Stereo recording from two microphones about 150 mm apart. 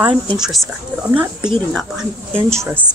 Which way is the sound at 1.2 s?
30° right (ahead or behind).